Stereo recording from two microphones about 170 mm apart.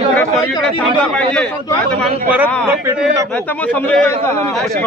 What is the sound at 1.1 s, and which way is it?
Speech, 5° left (ahead or behind).